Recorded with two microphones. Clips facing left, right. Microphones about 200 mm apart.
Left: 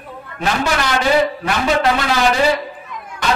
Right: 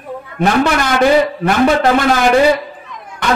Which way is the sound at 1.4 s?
50° right (ahead or behind).